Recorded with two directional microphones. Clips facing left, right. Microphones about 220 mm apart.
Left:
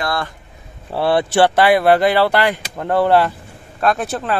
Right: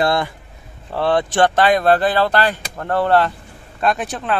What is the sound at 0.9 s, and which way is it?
Speech, 10° left (ahead or behind).